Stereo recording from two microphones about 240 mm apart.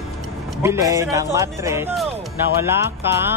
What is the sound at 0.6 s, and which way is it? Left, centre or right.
Speech, centre.